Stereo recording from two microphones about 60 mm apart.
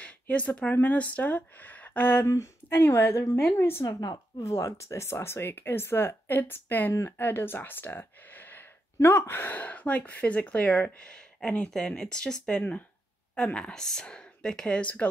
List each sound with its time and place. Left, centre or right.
0.0 s speech: left
2.2 s a woman's voice: left
3.8 s speech: left
4.4 s speech: left
9.0 s speech: left